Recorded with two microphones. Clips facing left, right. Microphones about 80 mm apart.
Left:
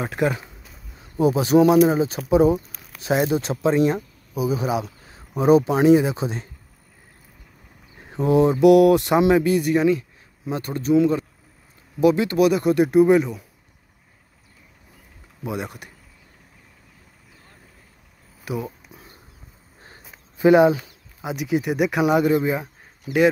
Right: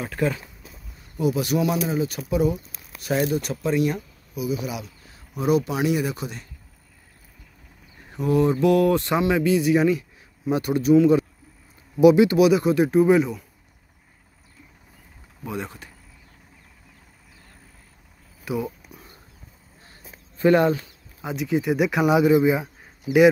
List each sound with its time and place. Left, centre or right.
0.1 s speech: left
8.1 s speech: left
9.5 s speech: centre
12.0 s speech: centre
15.4 s speech: centre
18.4 s a sound: centre
18.9 s a sound: left
20.3 s speech: centre